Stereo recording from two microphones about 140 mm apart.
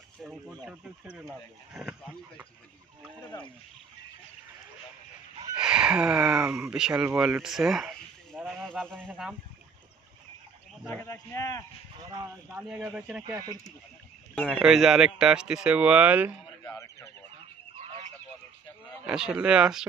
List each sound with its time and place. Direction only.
0.7 s speech: 10° right (ahead or behind)
5.6 s speech: 5° right (ahead or behind)
10.9 s speech: 15° left (ahead or behind)
12.6 s speech: 5° right (ahead or behind)
13.4 s speech: 30° right (ahead or behind)
14.5 s speech: 5° right (ahead or behind)
17.7 s a sound: 50° right (ahead or behind)
19.0 s speech: 5° right (ahead or behind)